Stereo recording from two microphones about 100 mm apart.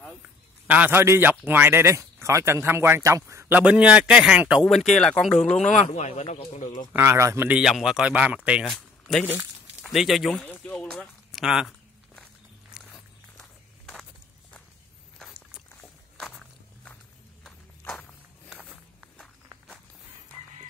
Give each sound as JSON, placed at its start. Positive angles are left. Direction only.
{"t": 0.7, "sound": "a man's voice", "side_deg": -15}
{"t": 3.5, "sound": "a man's voice", "side_deg": -10}
{"t": 4.6, "sound": "speech", "side_deg": 5}
{"t": 6.2, "sound": "speech", "side_deg": 90}
{"t": 6.9, "sound": "a man's voice", "side_deg": -25}
{"t": 7.6, "sound": "a man's voice", "side_deg": -5}
{"t": 8.6, "sound": "speech", "side_deg": 5}
{"t": 10.3, "sound": "speech", "side_deg": 10}
{"t": 11.3, "sound": "speech", "side_deg": -5}
{"t": 12.8, "sound": "walk", "side_deg": 0}
{"t": 16.2, "sound": "walk", "side_deg": 5}